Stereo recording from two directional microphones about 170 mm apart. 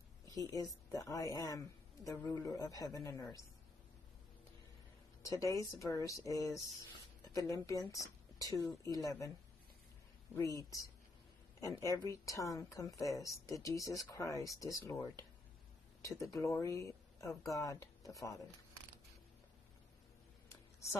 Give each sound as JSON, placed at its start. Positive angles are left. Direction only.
{"t": 0.9, "sound": "a woman's voice", "side_deg": 20}
{"t": 5.3, "sound": "a woman's voice", "side_deg": 20}
{"t": 10.3, "sound": "a woman's voice", "side_deg": 20}